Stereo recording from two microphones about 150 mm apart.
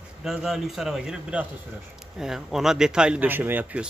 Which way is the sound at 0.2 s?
5° right (ahead or behind).